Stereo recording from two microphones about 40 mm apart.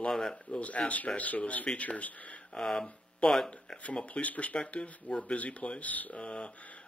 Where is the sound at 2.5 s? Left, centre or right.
Left.